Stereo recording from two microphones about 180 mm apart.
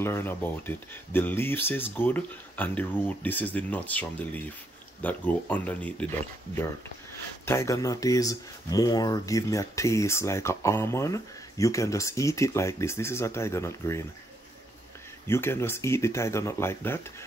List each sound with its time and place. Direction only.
0.0 s speech: 15° left (ahead or behind)
7.4 s speech: 15° left (ahead or behind)
15.2 s speech: 15° left (ahead or behind)